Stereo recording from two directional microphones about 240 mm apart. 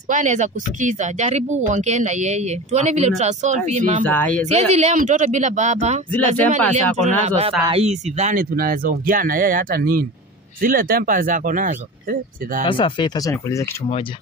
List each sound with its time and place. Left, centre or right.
0.1 s speech: right
4.0 s speech: centre
4.5 s speech: right
12.6 s speech: left